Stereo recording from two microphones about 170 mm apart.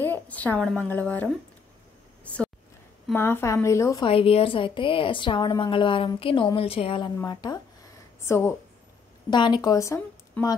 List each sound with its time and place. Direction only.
0.0 s a woman's voice: 10° left (ahead or behind)
2.2 s a sound: 5° left (ahead or behind)
3.1 s a woman's voice: 15° left (ahead or behind)
4.0 s a woman's voice: 30° left (ahead or behind)
7.2 s a woman's voice: 25° left (ahead or behind)
9.3 s speech: 25° left (ahead or behind)